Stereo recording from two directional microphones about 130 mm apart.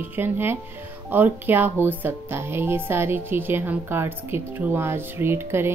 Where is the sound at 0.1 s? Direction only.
15° right (ahead or behind).